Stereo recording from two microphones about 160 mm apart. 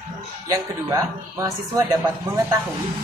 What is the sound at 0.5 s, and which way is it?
Speech, 20° right (ahead or behind).